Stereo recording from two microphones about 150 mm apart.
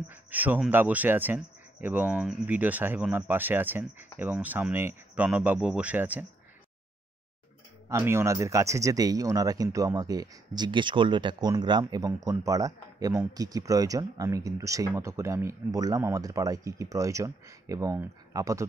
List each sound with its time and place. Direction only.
0.1 s speech: 10° right (ahead or behind)
7.9 s speech: 15° right (ahead or behind)